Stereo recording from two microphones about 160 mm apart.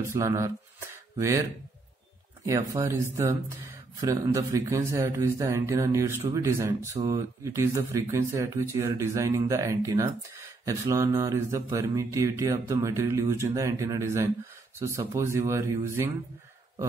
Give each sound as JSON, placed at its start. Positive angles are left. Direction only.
{"t": 0.1, "sound": "speech", "side_deg": -20}
{"t": 2.4, "sound": "speech", "side_deg": -20}